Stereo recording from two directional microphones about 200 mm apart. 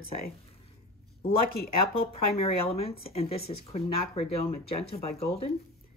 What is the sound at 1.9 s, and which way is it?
Speech, 30° left (ahead or behind).